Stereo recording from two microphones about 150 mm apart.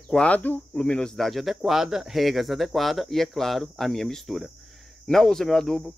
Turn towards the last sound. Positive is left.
turn(degrees=0)  # may be behind; listen again after turning